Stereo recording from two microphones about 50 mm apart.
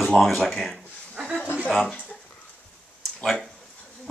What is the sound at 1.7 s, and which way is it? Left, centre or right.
Speech, centre.